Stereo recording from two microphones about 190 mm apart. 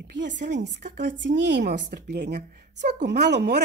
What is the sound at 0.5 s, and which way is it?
Speech, 65° right (ahead or behind).